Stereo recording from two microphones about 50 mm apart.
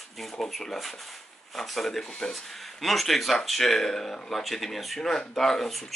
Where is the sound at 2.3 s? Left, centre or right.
Centre.